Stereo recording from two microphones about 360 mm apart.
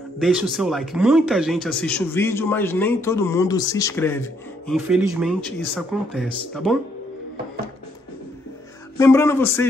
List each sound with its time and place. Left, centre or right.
0.2 s speech: centre
8.9 s speech: centre